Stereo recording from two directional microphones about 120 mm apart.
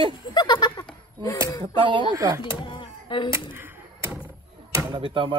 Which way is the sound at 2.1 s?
25° right (ahead or behind).